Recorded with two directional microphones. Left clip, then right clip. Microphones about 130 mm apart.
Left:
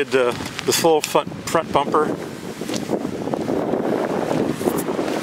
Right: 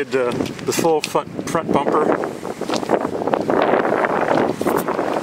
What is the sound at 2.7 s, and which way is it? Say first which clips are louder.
Wind noise: right 6 dB; 45° right (ahead or behind).